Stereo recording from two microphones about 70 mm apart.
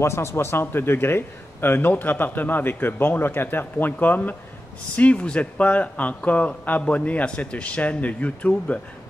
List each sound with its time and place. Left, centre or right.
0.0 s a man's voice: left; by 8.8 s centre